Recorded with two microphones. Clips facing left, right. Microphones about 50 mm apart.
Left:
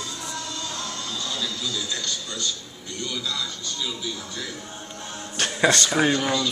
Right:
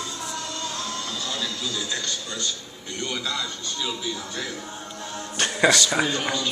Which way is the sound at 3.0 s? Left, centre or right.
Right.